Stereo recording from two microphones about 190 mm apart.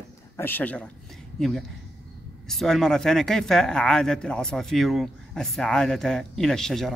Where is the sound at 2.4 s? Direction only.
Centre (ahead or behind).